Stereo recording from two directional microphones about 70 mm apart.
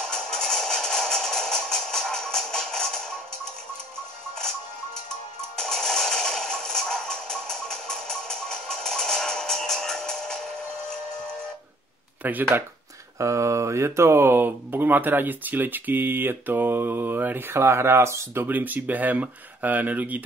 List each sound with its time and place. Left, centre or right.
0.0 s music: centre
5.6 s a sound: centre
12.2 s speech: right
13.2 s speech: right
18.5 s speech: right